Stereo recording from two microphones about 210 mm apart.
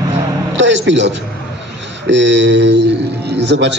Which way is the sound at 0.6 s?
60° right (ahead or behind).